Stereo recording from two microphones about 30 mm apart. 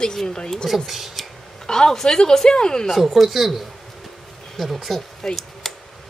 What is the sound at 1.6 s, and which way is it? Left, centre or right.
Speech, centre.